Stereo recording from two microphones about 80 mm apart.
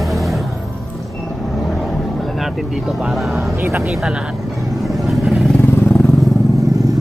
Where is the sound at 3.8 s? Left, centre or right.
Centre.